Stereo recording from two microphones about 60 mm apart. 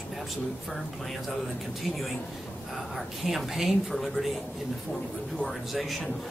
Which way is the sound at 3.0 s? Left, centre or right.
Centre.